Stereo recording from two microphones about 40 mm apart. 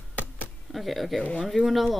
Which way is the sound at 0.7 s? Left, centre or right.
Centre.